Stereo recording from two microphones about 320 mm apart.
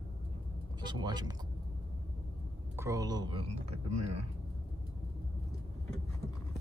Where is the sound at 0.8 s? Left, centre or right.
Centre.